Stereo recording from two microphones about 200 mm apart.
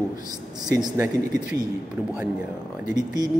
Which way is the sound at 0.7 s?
15° right (ahead or behind).